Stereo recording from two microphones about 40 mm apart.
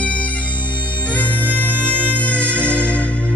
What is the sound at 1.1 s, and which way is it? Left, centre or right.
Music, left.